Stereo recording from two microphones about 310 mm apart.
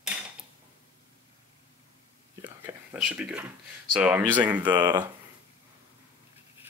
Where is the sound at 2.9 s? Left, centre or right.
Centre.